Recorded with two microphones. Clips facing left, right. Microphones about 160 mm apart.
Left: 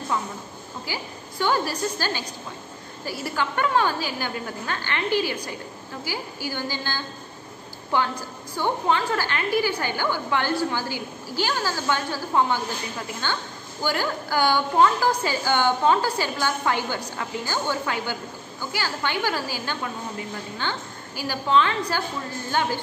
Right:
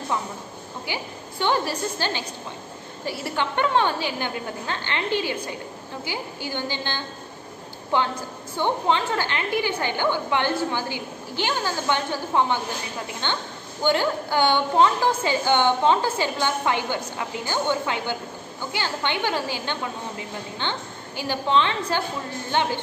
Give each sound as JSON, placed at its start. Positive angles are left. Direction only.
{"t": 0.8, "sound": "a woman's voice", "side_deg": -20}